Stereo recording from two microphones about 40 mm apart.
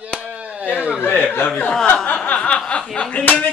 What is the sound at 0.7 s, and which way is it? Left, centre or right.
Chuckle, right.